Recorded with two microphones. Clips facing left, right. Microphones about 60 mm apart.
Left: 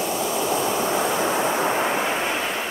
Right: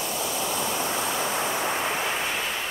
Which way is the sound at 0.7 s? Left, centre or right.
Left.